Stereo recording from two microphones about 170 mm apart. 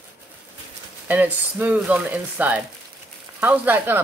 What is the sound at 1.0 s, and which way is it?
Speech, 10° right (ahead or behind).